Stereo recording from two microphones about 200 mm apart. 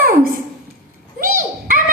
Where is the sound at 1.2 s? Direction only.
45° right (ahead or behind).